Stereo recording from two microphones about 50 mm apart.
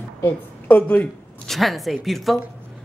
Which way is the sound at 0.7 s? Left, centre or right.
Left.